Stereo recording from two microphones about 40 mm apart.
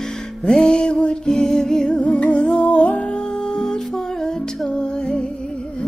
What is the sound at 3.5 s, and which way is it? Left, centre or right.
Music, centre.